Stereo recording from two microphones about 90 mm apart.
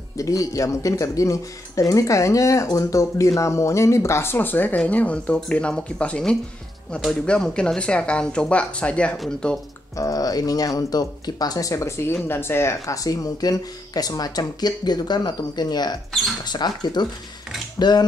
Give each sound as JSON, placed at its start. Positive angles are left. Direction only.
{"t": 0.2, "sound": "speech", "side_deg": 40}
{"t": 9.9, "sound": "speech", "side_deg": 40}